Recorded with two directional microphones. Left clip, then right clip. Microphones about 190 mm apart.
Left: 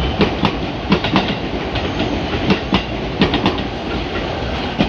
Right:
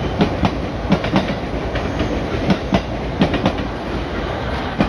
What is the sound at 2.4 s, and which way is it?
Train, 60° right (ahead or behind).